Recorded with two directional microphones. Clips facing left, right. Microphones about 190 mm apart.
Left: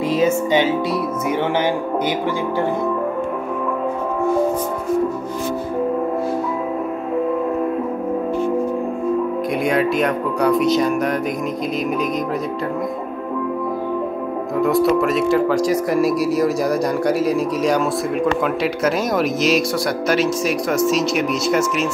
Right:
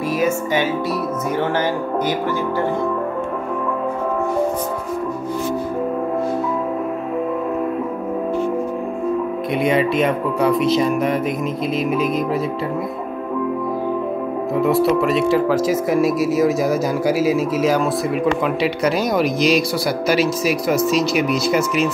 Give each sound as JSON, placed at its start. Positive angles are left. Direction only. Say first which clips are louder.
{"t": 0.1, "sound": "music", "louder": "left 3 dB", "side_deg": 20}
{"t": 9.6, "sound": "speech", "louder": "right 2 dB", "side_deg": 0}
{"t": 14.5, "sound": "speech", "louder": "even", "side_deg": 0}